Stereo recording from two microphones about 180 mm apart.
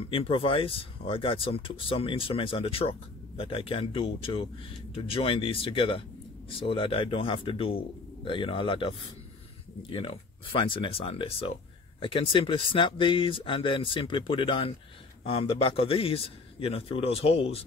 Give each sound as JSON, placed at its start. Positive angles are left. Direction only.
{"t": 0.1, "sound": "a man's voice", "side_deg": 30}